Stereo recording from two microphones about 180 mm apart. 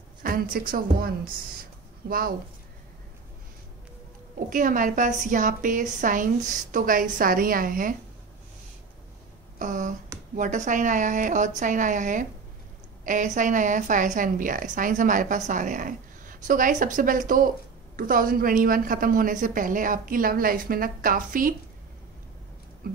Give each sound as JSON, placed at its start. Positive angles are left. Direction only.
{"t": 0.2, "sound": "a woman's voice", "side_deg": -55}
{"t": 4.5, "sound": "a woman's voice", "side_deg": -50}
{"t": 9.6, "sound": "a sound", "side_deg": -45}
{"t": 10.3, "sound": "a woman's voice", "side_deg": -45}